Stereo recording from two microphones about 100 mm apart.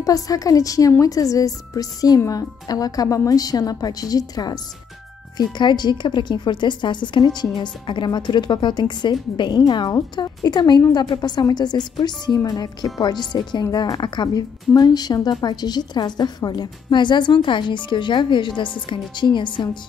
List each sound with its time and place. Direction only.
0.0 s a woman's voice: 35° left (ahead or behind)